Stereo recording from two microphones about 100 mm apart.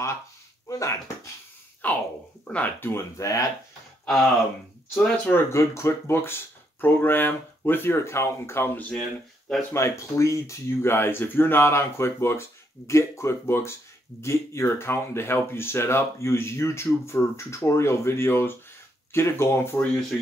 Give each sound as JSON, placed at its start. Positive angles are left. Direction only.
{"t": 0.7, "sound": "speech", "side_deg": 35}
{"t": 1.8, "sound": "speech", "side_deg": 15}
{"t": 4.0, "sound": "speech", "side_deg": 0}
{"t": 4.9, "sound": "speech", "side_deg": 20}
{"t": 9.7, "sound": "speech", "side_deg": 30}